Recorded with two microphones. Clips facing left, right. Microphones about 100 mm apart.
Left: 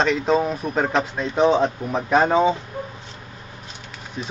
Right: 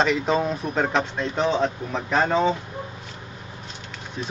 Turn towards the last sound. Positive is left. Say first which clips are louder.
# even
turn(degrees=0)  # may be behind; listen again after turning